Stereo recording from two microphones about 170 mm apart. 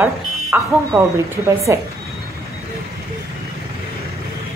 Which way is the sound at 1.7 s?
15° right (ahead or behind).